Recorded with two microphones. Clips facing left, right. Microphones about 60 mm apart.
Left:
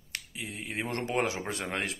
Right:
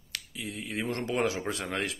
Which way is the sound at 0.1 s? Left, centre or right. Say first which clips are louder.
Even; left.